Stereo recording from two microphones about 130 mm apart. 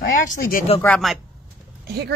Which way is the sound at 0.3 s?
90° left.